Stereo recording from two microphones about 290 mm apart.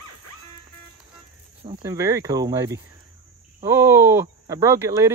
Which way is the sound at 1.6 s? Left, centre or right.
Centre.